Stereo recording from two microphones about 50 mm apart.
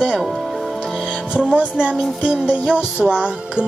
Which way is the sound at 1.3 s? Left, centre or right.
Right.